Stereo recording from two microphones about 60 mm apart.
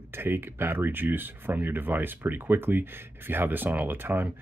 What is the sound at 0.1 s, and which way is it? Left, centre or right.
Speech, right.